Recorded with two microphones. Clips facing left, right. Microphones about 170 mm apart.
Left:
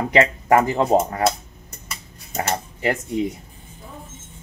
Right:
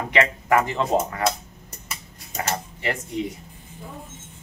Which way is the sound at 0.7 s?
50° left (ahead or behind).